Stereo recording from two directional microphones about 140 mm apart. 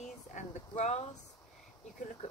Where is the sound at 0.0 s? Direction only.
55° left (ahead or behind).